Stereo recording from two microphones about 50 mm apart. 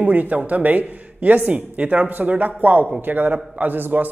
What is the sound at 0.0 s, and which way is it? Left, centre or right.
A man's voice, right.